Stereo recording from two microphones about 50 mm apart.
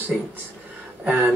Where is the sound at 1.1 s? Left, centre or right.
Right.